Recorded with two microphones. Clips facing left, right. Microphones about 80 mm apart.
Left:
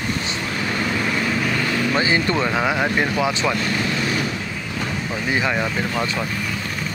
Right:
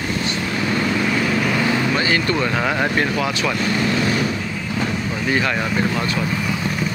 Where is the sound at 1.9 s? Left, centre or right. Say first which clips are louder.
Even; centre.